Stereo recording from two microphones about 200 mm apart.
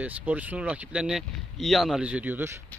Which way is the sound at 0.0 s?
10° right (ahead or behind).